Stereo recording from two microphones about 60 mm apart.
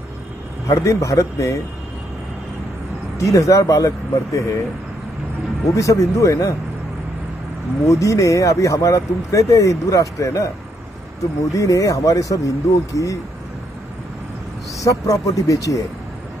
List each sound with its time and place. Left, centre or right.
0.7 s speech: left
3.2 s speech: left
5.8 s speech: left
7.8 s speech: left
11.5 s speech: left
14.8 s speech: left